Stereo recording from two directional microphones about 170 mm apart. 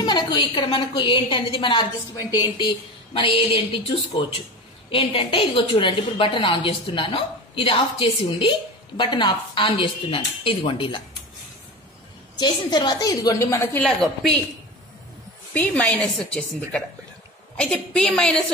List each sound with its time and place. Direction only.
0.0 s a woman's voice: 25° left (ahead or behind)
12.4 s a woman's voice: 25° left (ahead or behind)
13.8 s a woman's voice: centre (ahead or behind)
15.5 s a woman's voice: 10° left (ahead or behind)